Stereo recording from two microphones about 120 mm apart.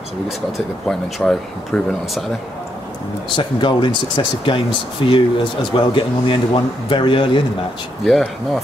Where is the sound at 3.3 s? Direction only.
40° left (ahead or behind).